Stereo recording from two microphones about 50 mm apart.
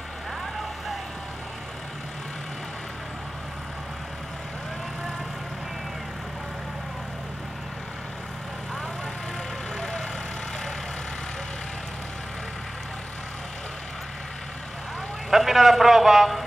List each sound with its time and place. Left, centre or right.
9.8 s vehicle: centre
15.2 s a man's voice: centre